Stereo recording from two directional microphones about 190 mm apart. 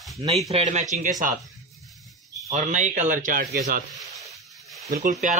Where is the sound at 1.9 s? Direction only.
Centre (ahead or behind).